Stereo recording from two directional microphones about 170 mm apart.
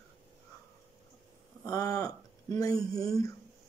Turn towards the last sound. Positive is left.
turn(degrees=20)  # may be behind; listen again after turning